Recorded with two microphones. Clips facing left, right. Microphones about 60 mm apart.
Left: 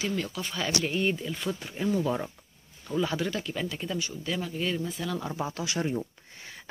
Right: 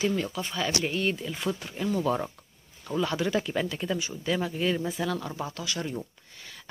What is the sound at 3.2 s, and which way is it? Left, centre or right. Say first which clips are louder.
Speech: right 4 dB; centre.